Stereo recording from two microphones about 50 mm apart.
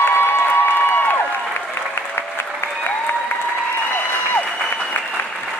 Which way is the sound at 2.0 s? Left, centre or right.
Left.